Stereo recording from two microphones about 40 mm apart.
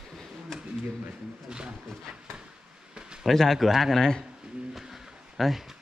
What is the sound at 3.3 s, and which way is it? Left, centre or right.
Speech, centre.